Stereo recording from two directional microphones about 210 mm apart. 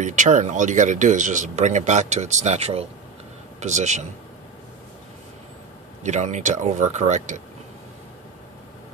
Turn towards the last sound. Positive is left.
turn(degrees=-35)  # may be behind; listen again after turning